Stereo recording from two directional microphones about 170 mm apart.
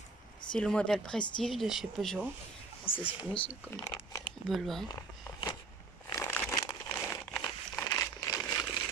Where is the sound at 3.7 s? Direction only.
20° left (ahead or behind).